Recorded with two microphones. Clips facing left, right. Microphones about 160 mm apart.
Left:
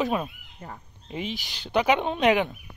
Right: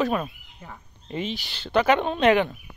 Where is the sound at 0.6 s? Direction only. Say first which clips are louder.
Left 2 dB; 40° left (ahead or behind).